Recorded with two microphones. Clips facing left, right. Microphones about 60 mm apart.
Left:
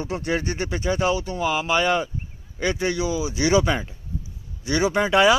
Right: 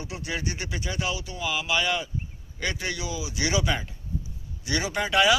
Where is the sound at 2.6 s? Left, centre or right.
Left.